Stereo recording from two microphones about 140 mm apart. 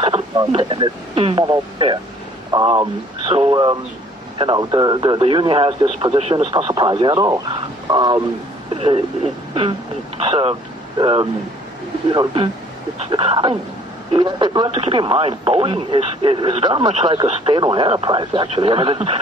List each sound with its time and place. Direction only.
0.0 s radio: 35° right (ahead or behind)
0.6 s speech: 35° right (ahead or behind)
8.7 s speech: 40° right (ahead or behind)
9.5 s a sound: 35° right (ahead or behind)
10.2 s speech: 45° right (ahead or behind)